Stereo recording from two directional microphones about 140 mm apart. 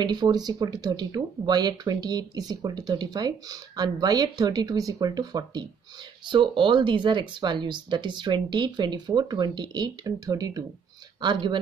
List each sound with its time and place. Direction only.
0.0 s speech: 30° right (ahead or behind)